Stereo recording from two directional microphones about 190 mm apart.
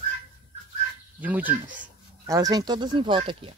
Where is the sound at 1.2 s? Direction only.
10° right (ahead or behind).